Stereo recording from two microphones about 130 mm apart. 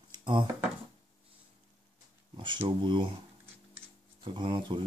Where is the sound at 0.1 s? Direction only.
35° right (ahead or behind).